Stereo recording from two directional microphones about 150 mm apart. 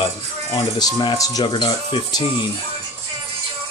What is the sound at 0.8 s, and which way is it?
Speech, 30° left (ahead or behind).